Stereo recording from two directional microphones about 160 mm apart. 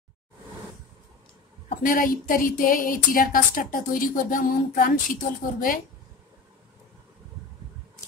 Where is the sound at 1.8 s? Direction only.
60° left (ahead or behind).